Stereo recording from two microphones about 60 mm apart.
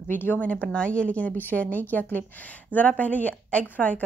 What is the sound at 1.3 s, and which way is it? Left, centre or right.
A woman's voice, left.